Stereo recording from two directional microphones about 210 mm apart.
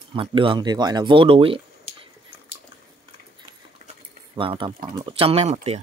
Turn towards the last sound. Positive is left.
turn(degrees=-30)  # may be behind; listen again after turning